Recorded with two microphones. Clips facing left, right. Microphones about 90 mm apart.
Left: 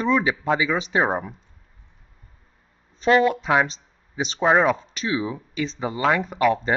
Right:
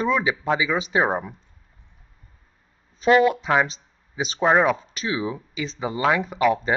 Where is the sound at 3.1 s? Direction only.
5° right (ahead or behind).